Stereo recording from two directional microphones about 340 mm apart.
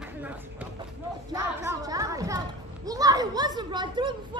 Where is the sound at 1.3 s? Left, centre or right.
Centre.